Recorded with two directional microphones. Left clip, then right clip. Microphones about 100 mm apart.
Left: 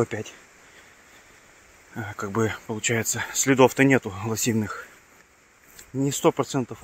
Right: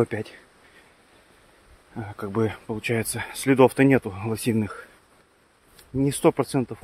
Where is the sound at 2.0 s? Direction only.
20° right (ahead or behind).